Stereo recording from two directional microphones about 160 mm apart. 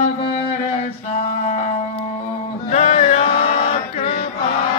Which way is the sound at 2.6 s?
45° left (ahead or behind).